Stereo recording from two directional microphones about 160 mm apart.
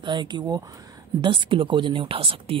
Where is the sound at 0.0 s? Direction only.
30° right (ahead or behind).